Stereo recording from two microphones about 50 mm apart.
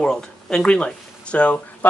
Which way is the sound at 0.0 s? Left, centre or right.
Centre.